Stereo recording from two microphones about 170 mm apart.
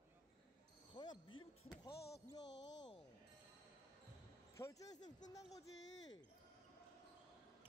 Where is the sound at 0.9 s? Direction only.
25° left (ahead or behind).